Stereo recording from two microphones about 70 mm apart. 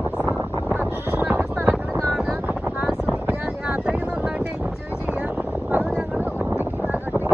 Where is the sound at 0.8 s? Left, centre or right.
Right.